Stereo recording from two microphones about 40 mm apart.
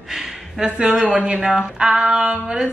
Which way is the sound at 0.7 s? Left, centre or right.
Right.